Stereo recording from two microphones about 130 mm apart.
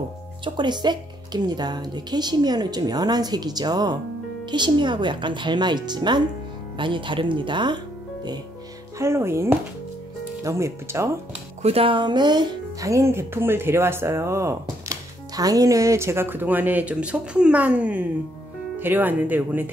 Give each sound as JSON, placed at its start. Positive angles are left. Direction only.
{"t": 0.6, "sound": "a woman's voice", "side_deg": -35}
{"t": 8.9, "sound": "speech", "side_deg": -20}
{"t": 11.6, "sound": "speech", "side_deg": -45}